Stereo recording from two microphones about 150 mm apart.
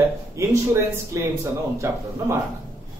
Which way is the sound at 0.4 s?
20° right (ahead or behind).